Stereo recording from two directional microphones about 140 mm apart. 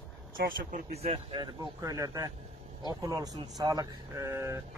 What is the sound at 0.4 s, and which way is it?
Speech, 70° right (ahead or behind).